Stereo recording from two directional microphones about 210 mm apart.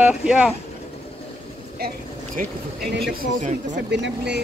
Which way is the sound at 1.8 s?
50° right (ahead or behind).